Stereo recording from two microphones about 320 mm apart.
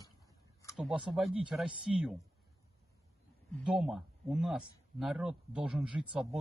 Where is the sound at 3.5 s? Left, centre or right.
Centre.